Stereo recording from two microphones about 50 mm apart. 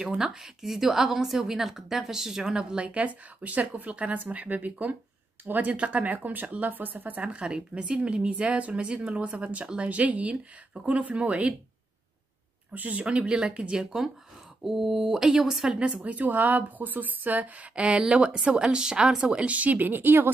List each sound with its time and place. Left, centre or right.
0.0 s a woman's voice: centre; by 7.2 s right
7.2 s speech: right
12.7 s speech: right
13.0 s speech: right
14.6 s a woman's voice: centre
15.8 s speech: right